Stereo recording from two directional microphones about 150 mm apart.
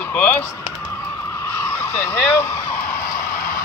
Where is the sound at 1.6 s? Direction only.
15° left (ahead or behind).